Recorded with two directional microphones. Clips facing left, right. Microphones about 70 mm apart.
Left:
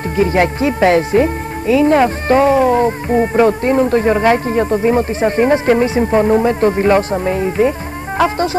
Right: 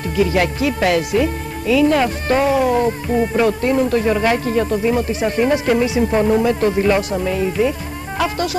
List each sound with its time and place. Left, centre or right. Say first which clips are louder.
0.2 s speech: left 3 dB; left